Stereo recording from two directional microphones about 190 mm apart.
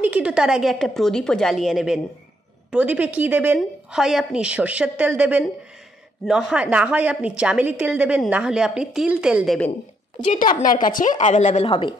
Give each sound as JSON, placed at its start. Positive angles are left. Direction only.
{"t": 0.0, "sound": "a woman's voice", "side_deg": -5}
{"t": 10.2, "sound": "a woman's voice", "side_deg": 40}